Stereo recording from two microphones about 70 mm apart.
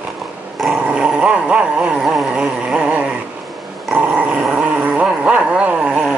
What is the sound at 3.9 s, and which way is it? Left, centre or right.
Dog, centre.